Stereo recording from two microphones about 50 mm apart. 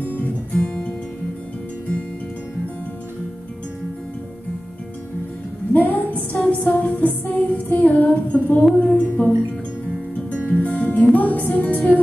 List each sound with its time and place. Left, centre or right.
0.1 s music: left
5.7 s music: left
10.3 s music: left